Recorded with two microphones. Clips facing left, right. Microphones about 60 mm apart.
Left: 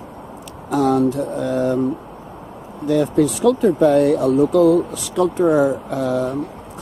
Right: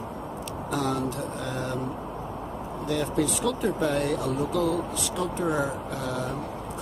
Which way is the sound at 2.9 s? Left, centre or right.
Centre.